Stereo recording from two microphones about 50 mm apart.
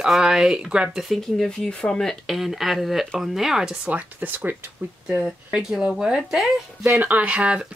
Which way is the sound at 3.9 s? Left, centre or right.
Right.